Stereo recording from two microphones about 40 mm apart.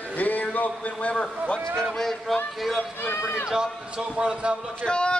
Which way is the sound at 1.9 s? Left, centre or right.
Centre.